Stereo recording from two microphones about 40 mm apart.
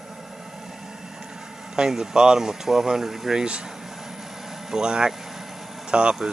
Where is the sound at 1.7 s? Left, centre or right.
Centre.